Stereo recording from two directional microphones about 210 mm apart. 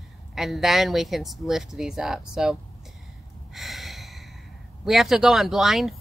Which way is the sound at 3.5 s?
Centre (ahead or behind).